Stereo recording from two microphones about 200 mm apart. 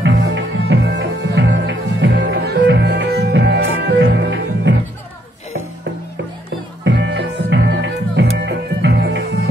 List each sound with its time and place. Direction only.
0.0 s music: 60° right (ahead or behind)
6.8 s music: 65° right (ahead or behind)